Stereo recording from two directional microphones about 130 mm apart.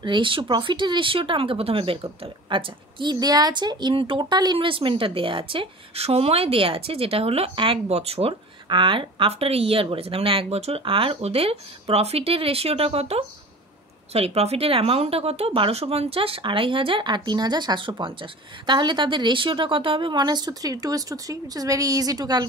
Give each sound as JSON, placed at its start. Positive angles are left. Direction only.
{"t": 0.0, "sound": "speech", "side_deg": -40}